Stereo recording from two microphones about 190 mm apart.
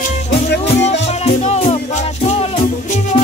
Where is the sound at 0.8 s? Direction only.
35° left (ahead or behind).